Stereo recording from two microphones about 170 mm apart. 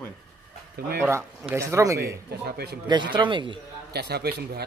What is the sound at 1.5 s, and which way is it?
Speech, 15° right (ahead or behind).